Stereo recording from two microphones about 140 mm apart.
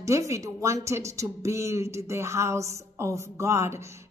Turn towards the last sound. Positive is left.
turn(degrees=-20)  # may be behind; listen again after turning